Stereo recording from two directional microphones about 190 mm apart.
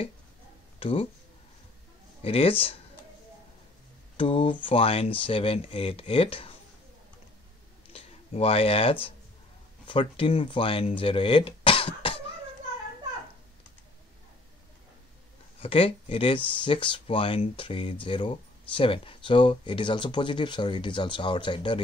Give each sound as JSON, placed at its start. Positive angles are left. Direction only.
{"t": 0.7, "sound": "speech", "side_deg": 30}
{"t": 2.2, "sound": "speech", "side_deg": 30}
{"t": 4.2, "sound": "speech", "side_deg": 30}
{"t": 7.9, "sound": "a sound", "side_deg": 30}
{"t": 9.8, "sound": "speech", "side_deg": 30}
{"t": 15.6, "sound": "speech", "side_deg": 30}